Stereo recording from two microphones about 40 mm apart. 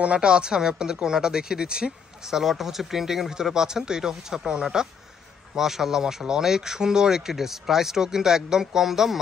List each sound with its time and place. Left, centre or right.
0.0 s speech: right; by 9.2 s centre